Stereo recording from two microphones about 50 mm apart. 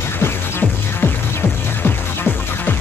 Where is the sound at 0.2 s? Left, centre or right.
Left.